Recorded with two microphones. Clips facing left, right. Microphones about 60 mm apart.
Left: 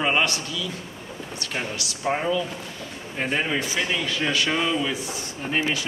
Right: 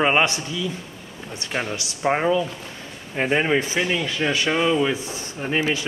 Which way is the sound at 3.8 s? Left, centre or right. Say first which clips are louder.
Right 3 dB; centre.